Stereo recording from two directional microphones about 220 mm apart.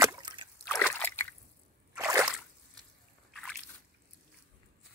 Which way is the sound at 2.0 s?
15° right (ahead or behind).